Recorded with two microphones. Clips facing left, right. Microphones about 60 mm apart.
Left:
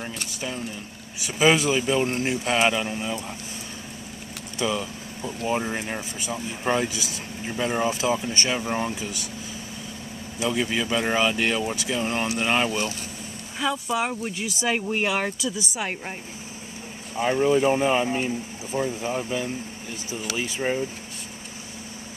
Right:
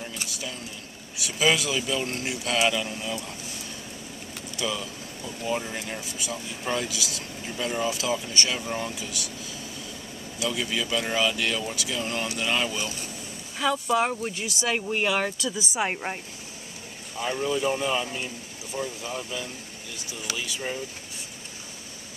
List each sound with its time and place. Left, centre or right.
1.2 s speech: left
4.6 s speech: left
10.4 s speech: left
13.6 s speech: centre
15.7 s speech: centre
17.1 s speech: left